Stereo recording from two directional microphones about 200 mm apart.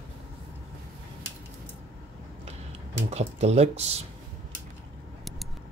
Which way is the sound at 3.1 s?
35° right (ahead or behind).